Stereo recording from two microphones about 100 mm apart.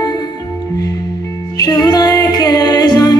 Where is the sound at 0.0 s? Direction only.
40° left (ahead or behind).